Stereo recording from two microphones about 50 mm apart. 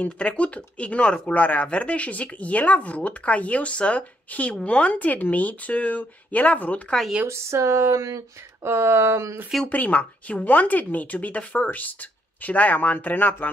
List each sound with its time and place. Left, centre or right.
0.0 s speech: left
1.3 s speech: left
7.2 s speech: right
8.6 s speech: right
9.7 s speech: left